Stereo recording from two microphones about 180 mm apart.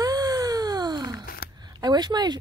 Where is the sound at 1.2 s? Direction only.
55° left (ahead or behind).